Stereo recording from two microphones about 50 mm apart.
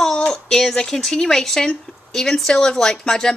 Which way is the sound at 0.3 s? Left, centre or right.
Centre.